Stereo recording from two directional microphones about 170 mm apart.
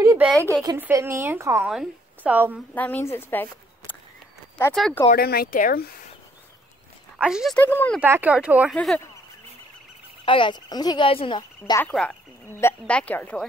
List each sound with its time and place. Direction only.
0.3 s a woman's voice: 10° left (ahead or behind)
0.7 s a woman's voice: 15° right (ahead or behind)
2.7 s speech: 10° left (ahead or behind)
5.1 s speech: 65° left (ahead or behind)
7.2 s speech: 5° right (ahead or behind)
7.5 s a woman's voice: 10° left (ahead or behind)
8.0 s a woman's voice: 10° right (ahead or behind)
8.7 s a woman's voice: 5° left (ahead or behind)
10.2 s speech: 30° left (ahead or behind)
11.8 s a woman's voice: 5° left (ahead or behind)